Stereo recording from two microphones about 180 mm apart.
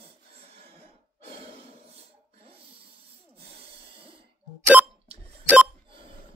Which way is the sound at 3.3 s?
35° right (ahead or behind).